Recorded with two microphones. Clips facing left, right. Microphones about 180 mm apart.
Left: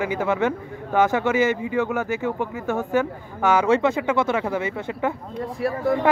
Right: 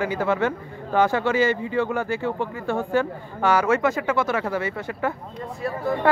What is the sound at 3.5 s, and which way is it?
Speech, 20° left (ahead or behind).